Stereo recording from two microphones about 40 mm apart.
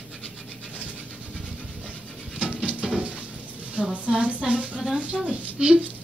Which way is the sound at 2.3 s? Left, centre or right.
Right.